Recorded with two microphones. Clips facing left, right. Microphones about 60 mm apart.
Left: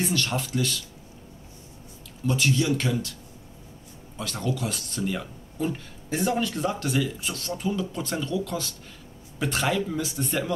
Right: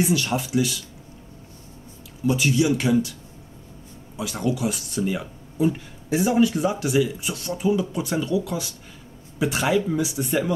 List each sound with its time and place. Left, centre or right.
0.0 s speech: centre
2.2 s speech: centre
4.2 s speech: centre